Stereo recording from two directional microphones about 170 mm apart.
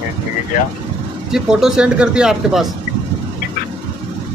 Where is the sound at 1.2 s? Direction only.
5° right (ahead or behind).